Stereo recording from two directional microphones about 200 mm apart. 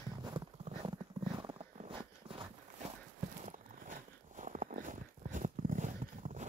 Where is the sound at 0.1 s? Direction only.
20° right (ahead or behind).